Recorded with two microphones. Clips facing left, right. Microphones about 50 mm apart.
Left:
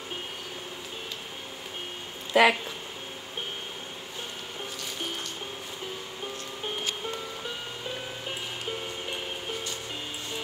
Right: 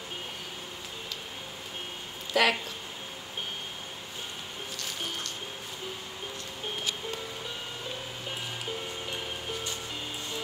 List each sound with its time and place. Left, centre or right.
2.3 s speech: left